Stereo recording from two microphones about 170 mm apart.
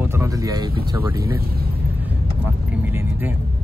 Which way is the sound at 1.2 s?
65° right (ahead or behind).